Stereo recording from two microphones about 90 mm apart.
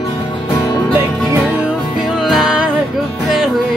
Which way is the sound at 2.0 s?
5° right (ahead or behind).